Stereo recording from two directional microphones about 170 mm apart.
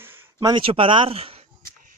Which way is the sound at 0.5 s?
30° right (ahead or behind).